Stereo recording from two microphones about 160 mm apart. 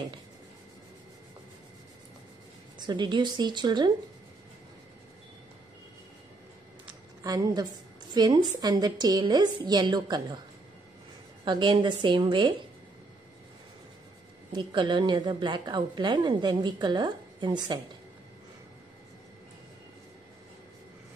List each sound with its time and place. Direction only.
2.9 s a woman's voice: 30° right (ahead or behind)
7.2 s a woman's voice: 25° right (ahead or behind)
11.4 s a woman's voice: 30° right (ahead or behind)
14.5 s a woman's voice: 30° right (ahead or behind)